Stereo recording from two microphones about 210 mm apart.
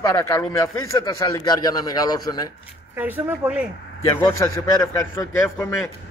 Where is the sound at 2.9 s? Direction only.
10° right (ahead or behind).